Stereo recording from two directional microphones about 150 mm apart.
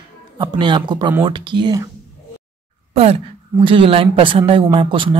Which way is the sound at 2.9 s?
45° right (ahead or behind).